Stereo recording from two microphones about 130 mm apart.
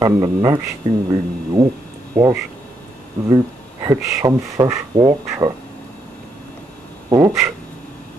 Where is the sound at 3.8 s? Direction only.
25° right (ahead or behind).